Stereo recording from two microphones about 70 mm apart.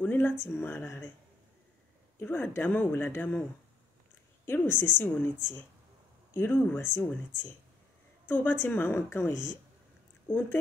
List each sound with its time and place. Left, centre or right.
0.0 s speech: left
2.2 s a woman's voice: left
4.5 s a woman's voice: left
8.3 s a woman's voice: left